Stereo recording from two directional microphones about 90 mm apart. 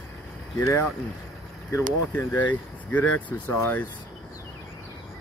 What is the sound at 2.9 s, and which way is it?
Speech, 20° left (ahead or behind).